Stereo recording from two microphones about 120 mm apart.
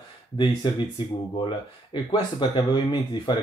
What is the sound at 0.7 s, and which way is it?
Speech, 40° left (ahead or behind).